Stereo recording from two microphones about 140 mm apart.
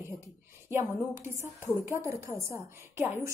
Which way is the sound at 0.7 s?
15° right (ahead or behind).